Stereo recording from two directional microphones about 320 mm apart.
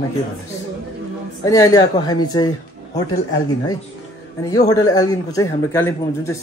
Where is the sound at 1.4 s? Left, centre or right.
Centre.